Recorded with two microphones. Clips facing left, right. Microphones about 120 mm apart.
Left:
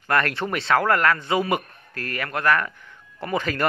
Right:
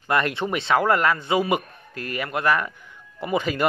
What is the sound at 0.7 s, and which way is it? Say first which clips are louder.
Speech: even; 15° right (ahead or behind).